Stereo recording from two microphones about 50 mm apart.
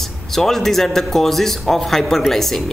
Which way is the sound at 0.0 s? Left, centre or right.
Centre.